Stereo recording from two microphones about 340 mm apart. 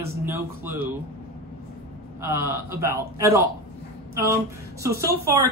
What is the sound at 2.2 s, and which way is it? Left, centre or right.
Speech, centre.